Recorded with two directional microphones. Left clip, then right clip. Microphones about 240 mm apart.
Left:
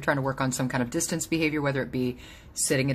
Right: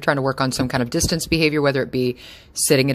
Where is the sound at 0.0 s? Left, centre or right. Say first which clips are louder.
Right 7 dB; right.